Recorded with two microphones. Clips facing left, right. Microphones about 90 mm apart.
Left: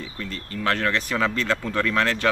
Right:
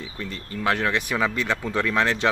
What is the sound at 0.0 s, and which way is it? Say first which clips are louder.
Speech: even; 20° right (ahead or behind).